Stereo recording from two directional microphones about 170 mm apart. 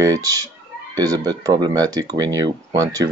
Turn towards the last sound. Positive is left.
turn(degrees=-20)  # may be behind; listen again after turning